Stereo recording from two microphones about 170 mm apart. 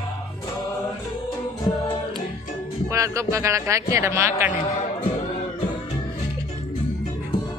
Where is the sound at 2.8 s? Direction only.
20° right (ahead or behind).